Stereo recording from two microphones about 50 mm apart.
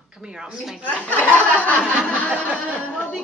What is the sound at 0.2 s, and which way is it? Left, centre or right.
Speech, centre.